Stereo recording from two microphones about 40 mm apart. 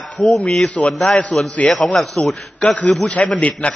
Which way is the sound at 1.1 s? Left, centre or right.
Left.